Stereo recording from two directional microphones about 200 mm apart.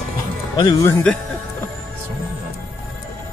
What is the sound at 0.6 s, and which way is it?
Speech, 20° left (ahead or behind).